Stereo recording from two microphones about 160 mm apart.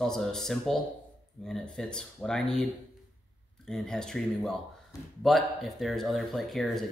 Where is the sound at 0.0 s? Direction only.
Centre (ahead or behind).